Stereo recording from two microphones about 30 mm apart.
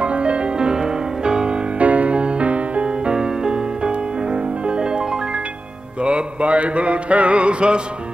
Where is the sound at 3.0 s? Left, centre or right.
Right.